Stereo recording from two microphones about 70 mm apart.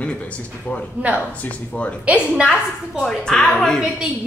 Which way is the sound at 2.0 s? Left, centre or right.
Centre.